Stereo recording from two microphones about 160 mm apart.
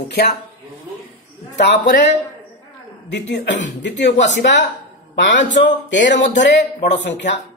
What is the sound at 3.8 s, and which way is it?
Speech, 90° left.